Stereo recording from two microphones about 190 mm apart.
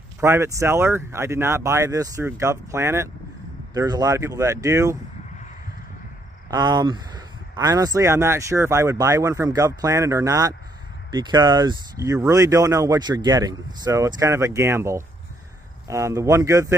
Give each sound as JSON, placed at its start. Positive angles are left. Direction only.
{"t": 0.2, "sound": "speech", "side_deg": -15}
{"t": 6.5, "sound": "speech", "side_deg": -20}